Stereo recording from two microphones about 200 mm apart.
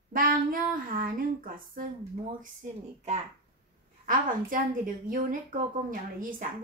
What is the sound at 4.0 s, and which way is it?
A woman's voice, 40° right (ahead or behind).